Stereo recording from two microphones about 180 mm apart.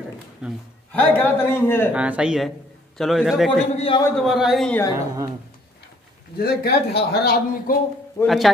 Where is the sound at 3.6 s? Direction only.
35° left (ahead or behind).